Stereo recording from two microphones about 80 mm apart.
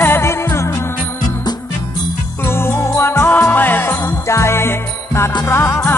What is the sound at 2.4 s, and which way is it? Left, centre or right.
Music, left.